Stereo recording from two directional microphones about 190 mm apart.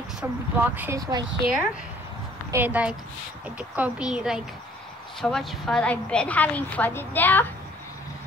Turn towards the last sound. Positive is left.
turn(degrees=10)  # may be behind; listen again after turning